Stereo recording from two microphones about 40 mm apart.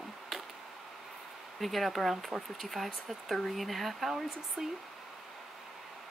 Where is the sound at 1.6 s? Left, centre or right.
Centre.